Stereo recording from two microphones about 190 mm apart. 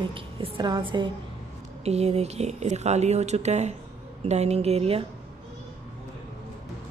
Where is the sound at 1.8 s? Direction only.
35° right (ahead or behind).